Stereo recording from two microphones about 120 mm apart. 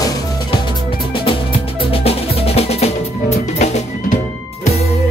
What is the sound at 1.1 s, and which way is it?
Music, 45° left (ahead or behind).